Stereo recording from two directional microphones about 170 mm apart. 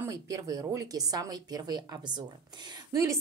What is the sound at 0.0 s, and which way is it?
A woman's voice, 20° right (ahead or behind).